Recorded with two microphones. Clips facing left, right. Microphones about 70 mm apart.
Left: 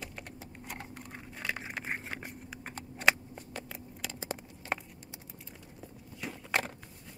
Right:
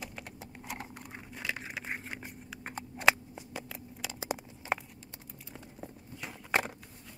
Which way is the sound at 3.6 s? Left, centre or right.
Centre.